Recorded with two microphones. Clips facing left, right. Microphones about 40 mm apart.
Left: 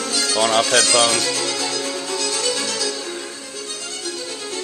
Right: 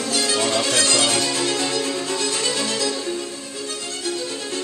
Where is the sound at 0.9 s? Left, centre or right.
Left.